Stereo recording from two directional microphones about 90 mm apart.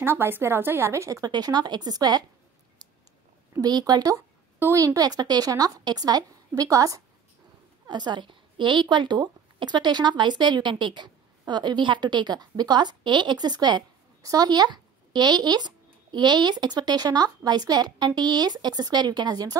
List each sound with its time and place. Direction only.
0.0 s a woman's voice: 25° right (ahead or behind)
1.3 s speech: 50° right (ahead or behind)
3.6 s speech: 50° right (ahead or behind)
4.6 s a woman's voice: 25° right (ahead or behind)
4.8 s speech: 45° right (ahead or behind)
7.9 s a woman's voice: 55° right (ahead or behind)